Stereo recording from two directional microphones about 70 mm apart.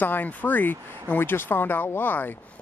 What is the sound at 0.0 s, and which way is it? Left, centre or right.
Speech, left.